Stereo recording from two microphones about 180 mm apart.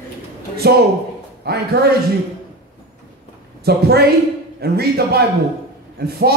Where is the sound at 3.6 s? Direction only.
60° right (ahead or behind).